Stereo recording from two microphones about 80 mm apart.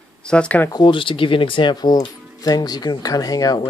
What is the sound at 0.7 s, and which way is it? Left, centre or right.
Speech, left.